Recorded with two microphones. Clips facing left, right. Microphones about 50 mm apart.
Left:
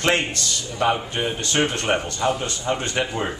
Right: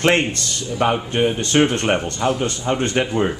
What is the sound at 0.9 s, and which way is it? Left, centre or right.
A man's voice, centre.